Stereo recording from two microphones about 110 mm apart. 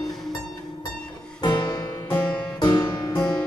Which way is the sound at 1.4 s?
45° left (ahead or behind).